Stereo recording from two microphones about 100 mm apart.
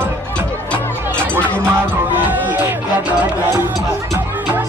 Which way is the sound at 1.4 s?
15° left (ahead or behind).